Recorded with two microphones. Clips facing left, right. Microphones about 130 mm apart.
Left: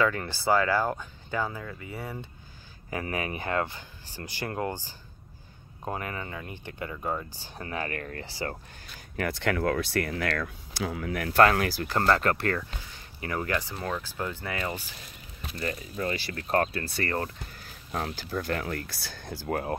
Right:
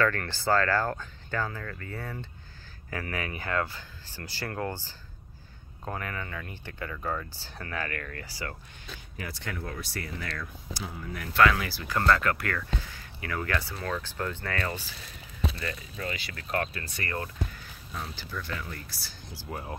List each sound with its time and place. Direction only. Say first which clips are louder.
0.0 s speech: left 1 dB; 15° left (ahead or behind)
9.1 s speech: left 10 dB; 65° left (ahead or behind)
11.3 s speech: left 3 dB; 50° left (ahead or behind)
11.9 s speech: even; 35° left (ahead or behind); by 15.0 s 15° left (ahead or behind)
15.6 s speech: left 4 dB; 35° left (ahead or behind)
18.1 s speech: left 6 dB; 45° left (ahead or behind)